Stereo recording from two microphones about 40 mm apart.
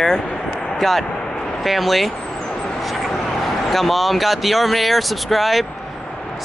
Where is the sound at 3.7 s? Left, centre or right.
Centre.